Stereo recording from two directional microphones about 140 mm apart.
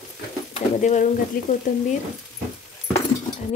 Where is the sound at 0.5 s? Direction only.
60° left (ahead or behind).